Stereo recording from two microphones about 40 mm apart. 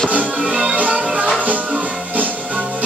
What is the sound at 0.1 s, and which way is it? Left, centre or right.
Music, right.